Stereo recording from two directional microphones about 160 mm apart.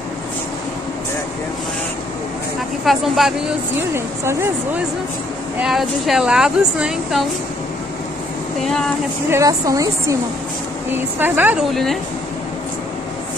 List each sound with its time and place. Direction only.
2.8 s speech: centre (ahead or behind)
3.9 s speech: 15° right (ahead or behind)
5.6 s speech: centre (ahead or behind)
8.6 s speech: 5° left (ahead or behind)
9.3 s a woman's voice: 20° right (ahead or behind)
11.1 s speech: 10° right (ahead or behind)
11.7 s speech: centre (ahead or behind)